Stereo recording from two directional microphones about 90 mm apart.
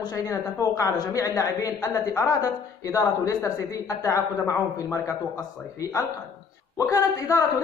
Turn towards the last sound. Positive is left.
turn(degrees=40)  # may be behind; listen again after turning